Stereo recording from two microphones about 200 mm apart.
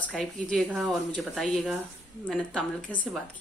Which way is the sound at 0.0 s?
5° left (ahead or behind).